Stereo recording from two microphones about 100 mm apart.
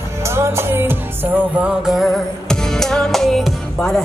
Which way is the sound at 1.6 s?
5° right (ahead or behind).